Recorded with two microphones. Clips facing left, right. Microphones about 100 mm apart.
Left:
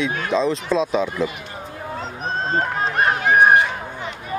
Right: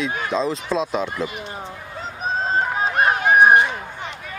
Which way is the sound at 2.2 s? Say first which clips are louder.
Right 1 dB; 5° right (ahead or behind).